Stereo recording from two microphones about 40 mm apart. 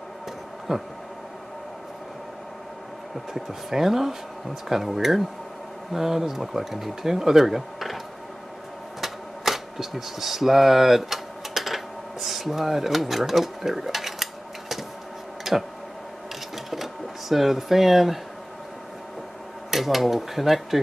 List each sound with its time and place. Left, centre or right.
0.7 s speech: centre
3.3 s speech: centre
9.0 s typewriter: centre
15.5 s speech: centre
16.5 s sewing machine: centre
19.7 s speech: centre